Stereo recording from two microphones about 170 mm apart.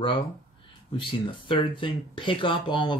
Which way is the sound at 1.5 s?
30° left (ahead or behind).